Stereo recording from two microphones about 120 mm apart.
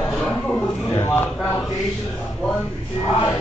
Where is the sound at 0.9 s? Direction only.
20° left (ahead or behind).